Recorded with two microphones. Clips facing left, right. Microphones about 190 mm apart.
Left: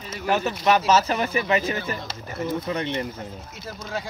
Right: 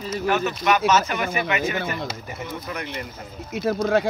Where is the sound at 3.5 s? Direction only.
65° right (ahead or behind).